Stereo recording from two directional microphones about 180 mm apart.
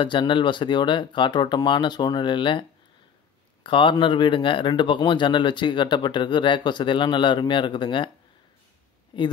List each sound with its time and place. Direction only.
0.0 s speech: 25° left (ahead or behind)
3.6 s speech: 25° left (ahead or behind)
9.1 s speech: 30° left (ahead or behind)